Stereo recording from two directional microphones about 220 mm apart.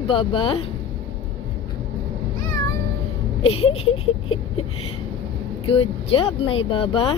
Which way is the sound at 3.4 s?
25° left (ahead or behind).